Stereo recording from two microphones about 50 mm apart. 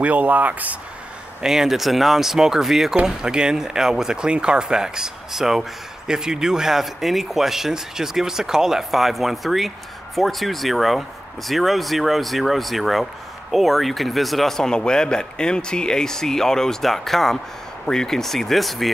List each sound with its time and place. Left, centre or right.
0.0 s speech: right
1.4 s speech: centre
14.7 s speech: centre